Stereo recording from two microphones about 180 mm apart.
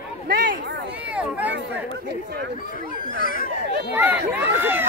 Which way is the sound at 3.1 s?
50° left (ahead or behind).